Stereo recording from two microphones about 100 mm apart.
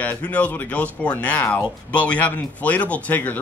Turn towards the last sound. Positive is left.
turn(degrees=15)  # may be behind; listen again after turning